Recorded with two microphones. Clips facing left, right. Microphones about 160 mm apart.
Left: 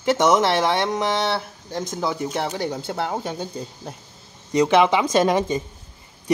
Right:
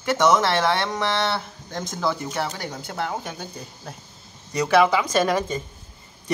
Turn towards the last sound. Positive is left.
turn(degrees=20)  # may be behind; listen again after turning